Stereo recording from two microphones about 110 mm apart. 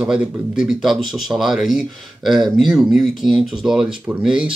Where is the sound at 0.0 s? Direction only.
5° right (ahead or behind).